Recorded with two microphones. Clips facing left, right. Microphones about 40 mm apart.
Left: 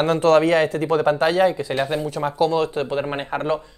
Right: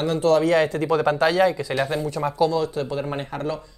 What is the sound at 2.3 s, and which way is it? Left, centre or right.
Speech, left.